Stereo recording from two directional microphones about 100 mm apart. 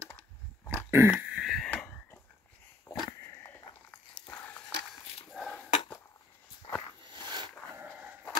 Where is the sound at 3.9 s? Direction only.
15° left (ahead or behind).